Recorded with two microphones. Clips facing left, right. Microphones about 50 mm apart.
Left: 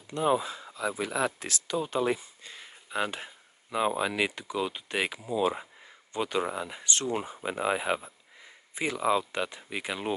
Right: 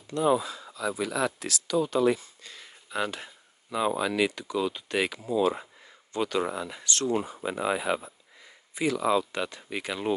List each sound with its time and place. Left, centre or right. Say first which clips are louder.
0.0 s speech: right 2 dB; left